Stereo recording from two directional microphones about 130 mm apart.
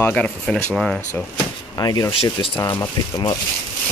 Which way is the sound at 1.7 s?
30° left (ahead or behind).